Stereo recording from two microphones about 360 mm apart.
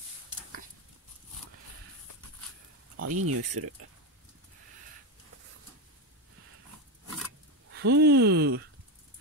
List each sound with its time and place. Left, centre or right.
3.0 s speech: right
7.7 s speech: right